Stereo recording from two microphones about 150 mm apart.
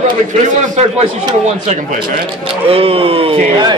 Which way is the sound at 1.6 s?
55° right (ahead or behind).